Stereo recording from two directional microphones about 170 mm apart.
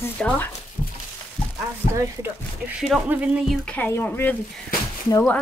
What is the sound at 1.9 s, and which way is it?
Speech, 15° right (ahead or behind).